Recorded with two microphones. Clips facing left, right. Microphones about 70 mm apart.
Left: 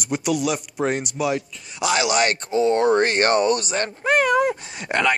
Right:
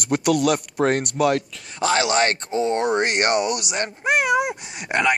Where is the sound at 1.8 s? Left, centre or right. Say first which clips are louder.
Right 1 dB; right.